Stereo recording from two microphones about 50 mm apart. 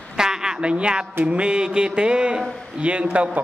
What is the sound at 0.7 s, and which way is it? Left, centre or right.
Speech, centre.